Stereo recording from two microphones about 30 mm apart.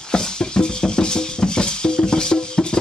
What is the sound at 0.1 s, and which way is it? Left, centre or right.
Music, left.